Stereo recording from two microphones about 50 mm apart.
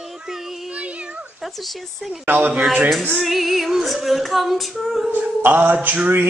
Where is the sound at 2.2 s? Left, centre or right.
Right.